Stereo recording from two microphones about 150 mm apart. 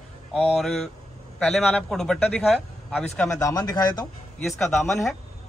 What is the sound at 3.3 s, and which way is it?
Speech, 25° left (ahead or behind).